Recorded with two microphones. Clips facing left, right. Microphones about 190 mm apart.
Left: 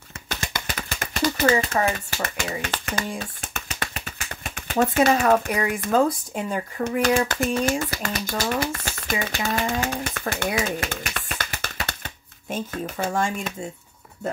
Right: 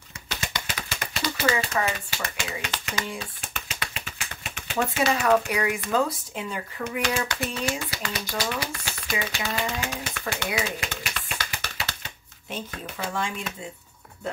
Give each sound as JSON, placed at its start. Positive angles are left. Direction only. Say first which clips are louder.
{"t": 0.3, "sound": "speech", "louder": "left 3 dB", "side_deg": 50}